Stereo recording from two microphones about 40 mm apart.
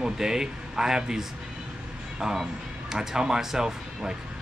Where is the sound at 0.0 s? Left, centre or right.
Centre.